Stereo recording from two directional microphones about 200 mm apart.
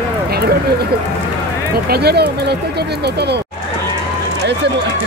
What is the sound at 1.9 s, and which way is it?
Speech, 55° right (ahead or behind).